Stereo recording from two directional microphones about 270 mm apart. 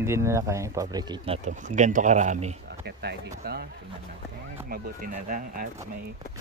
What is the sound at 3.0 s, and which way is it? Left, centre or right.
Speech, right.